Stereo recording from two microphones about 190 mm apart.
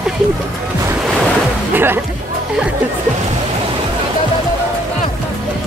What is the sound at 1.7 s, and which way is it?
Music, 10° right (ahead or behind).